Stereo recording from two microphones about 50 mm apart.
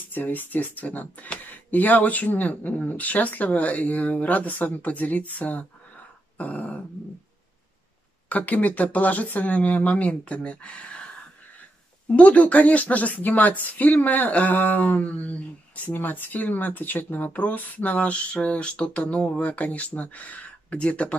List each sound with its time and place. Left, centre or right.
0.1 s speech: left
6.3 s dog: left
8.3 s speech: left
12.1 s speech: left